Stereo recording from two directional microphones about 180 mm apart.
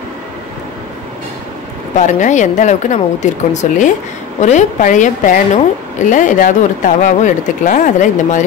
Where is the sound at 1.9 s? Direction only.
45° left (ahead or behind).